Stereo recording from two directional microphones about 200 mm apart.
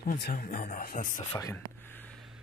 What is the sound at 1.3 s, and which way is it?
Speech, 15° left (ahead or behind).